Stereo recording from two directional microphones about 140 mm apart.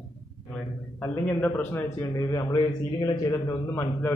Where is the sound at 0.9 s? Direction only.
10° left (ahead or behind).